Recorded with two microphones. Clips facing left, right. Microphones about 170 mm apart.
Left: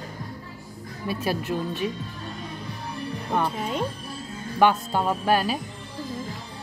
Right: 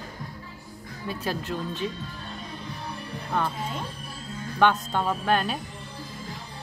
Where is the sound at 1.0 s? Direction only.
10° left (ahead or behind).